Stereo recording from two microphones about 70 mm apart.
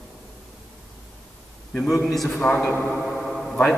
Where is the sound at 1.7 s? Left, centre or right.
Centre.